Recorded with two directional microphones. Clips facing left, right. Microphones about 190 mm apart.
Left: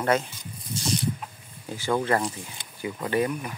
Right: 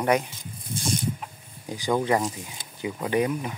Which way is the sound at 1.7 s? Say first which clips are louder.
Right 1 dB; 15° right (ahead or behind).